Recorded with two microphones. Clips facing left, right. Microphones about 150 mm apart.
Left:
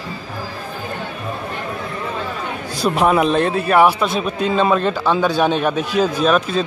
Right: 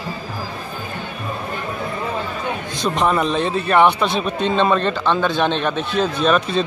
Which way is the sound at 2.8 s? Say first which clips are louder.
Left 3 dB; 5° left (ahead or behind).